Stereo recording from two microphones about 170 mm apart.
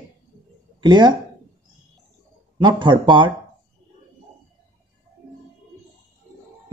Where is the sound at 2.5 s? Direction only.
25° right (ahead or behind).